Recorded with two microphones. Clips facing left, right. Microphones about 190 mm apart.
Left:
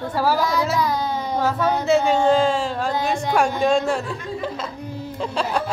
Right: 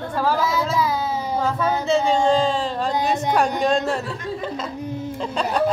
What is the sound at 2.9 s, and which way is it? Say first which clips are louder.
Speech: right 1 dB; 20° right (ahead or behind).